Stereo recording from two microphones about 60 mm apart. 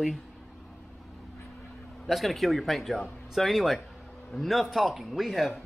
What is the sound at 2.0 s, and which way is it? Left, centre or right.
Speech, centre.